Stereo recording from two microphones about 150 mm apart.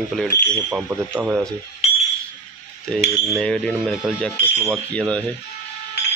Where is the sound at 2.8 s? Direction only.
Centre (ahead or behind).